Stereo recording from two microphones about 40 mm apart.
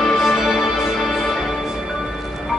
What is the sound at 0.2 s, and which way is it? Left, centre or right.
Music, centre.